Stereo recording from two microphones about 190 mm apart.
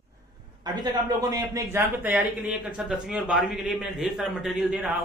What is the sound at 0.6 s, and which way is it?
A man's voice, 20° right (ahead or behind).